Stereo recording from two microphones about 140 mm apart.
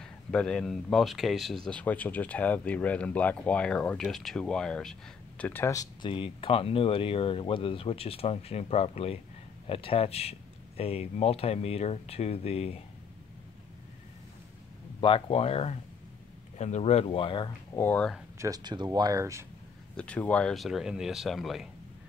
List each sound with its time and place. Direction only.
0.0 s speech: 5° left (ahead or behind)
5.4 s speech: 15° left (ahead or behind)
6.0 s speech: 40° left (ahead or behind)
15.0 s speech: 40° left (ahead or behind)
17.7 s speech: 15° left (ahead or behind)
18.4 s speech: 30° right (ahead or behind)
20.0 s speech: 10° left (ahead or behind)